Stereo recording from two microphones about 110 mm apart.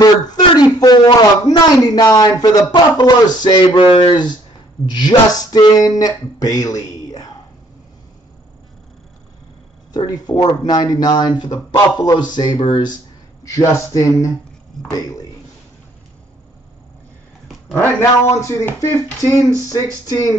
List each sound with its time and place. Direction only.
0.0 s speech: 40° left (ahead or behind)
9.9 s speech: 40° left (ahead or behind)
13.4 s speech: 30° left (ahead or behind)
14.8 s a sound: 5° left (ahead or behind)
17.6 s speech: 20° left (ahead or behind)
19.7 s speech: 35° left (ahead or behind)